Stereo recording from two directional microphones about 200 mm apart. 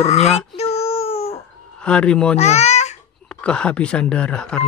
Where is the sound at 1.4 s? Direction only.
5° left (ahead or behind).